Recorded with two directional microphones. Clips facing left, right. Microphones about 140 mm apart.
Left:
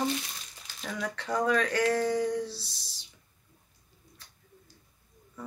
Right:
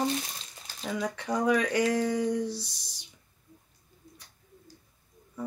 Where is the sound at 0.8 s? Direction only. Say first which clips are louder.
Right 3 dB; 15° right (ahead or behind).